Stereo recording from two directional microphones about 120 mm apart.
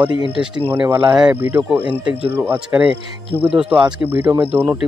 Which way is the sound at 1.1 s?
10° right (ahead or behind).